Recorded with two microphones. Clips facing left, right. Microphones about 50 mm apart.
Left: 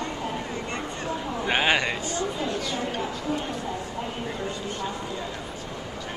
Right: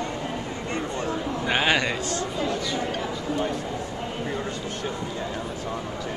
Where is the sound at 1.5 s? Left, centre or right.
Centre.